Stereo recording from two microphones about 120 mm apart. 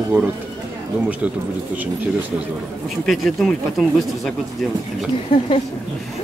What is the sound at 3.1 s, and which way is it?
Speech, centre (ahead or behind).